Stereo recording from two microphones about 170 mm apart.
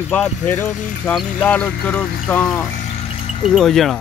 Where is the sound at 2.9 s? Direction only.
35° left (ahead or behind).